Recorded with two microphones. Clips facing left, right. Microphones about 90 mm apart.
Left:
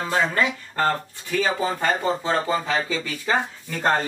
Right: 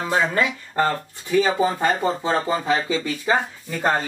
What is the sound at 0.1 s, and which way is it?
Speech, 20° right (ahead or behind).